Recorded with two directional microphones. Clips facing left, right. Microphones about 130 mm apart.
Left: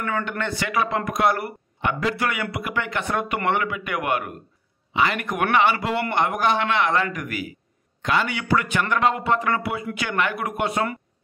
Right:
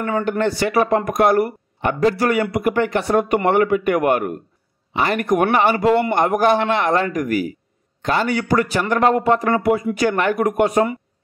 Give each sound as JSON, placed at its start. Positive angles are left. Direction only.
{"t": 0.0, "sound": "speech", "side_deg": -40}